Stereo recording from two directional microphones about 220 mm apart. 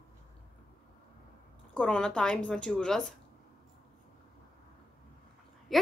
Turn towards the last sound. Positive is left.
turn(degrees=0)  # may be behind; listen again after turning